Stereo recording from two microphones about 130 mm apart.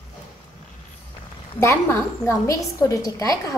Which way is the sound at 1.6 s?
20° left (ahead or behind).